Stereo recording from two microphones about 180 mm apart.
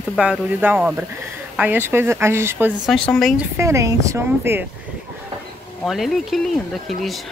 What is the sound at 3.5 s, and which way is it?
A woman's voice, 15° right (ahead or behind).